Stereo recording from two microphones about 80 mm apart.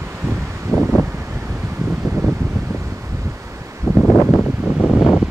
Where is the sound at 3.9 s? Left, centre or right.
Centre.